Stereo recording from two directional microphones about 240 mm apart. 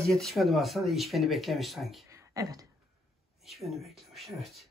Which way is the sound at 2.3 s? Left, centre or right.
Centre.